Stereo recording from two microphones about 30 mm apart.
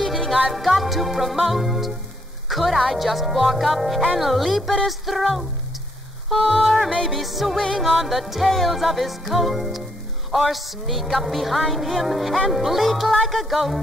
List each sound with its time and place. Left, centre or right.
0.0 s music: centre